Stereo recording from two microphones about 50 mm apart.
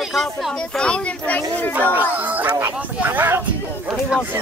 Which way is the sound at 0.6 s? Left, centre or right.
Centre.